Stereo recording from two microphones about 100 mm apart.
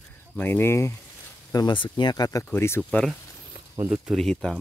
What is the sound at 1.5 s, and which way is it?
Speech, 50° left (ahead or behind).